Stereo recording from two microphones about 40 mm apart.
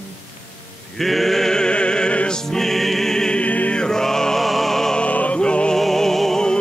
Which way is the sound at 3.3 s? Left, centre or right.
Left.